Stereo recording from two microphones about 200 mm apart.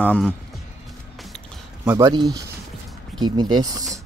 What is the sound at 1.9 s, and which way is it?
Speech, 20° right (ahead or behind).